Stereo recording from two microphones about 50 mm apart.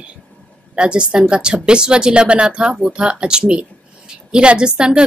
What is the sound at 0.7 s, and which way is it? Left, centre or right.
A woman's voice, centre.